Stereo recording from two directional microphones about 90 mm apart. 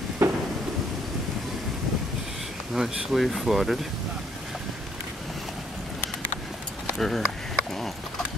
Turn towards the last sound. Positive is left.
turn(degrees=5)  # may be behind; listen again after turning